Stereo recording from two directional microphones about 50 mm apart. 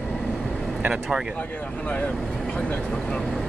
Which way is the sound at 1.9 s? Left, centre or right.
Left.